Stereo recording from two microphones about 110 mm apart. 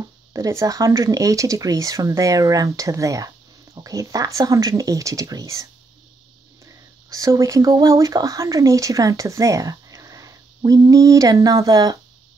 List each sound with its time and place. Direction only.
0.0 s speech: 30° right (ahead or behind)